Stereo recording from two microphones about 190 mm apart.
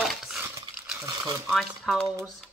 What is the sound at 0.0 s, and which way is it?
Dog, centre (ahead or behind).